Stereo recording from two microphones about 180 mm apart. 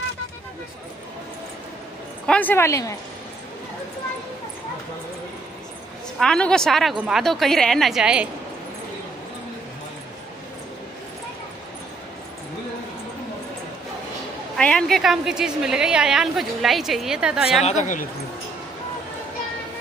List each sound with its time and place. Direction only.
2.2 s a woman's voice: 10° left (ahead or behind)
6.1 s a woman's voice: 5° left (ahead or behind)
14.6 s a woman's voice: 5° left (ahead or behind)
17.6 s a woman's voice: 45° left (ahead or behind)